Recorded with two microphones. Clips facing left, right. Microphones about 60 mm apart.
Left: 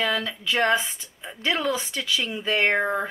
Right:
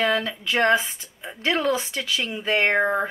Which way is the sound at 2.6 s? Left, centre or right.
Centre.